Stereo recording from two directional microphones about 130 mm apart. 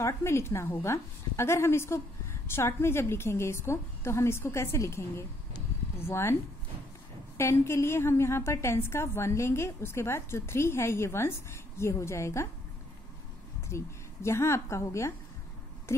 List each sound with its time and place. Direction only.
0.0 s a woman's voice: 20° left (ahead or behind)
7.3 s a woman's voice: 20° left (ahead or behind)
13.7 s a woman's voice: 20° left (ahead or behind)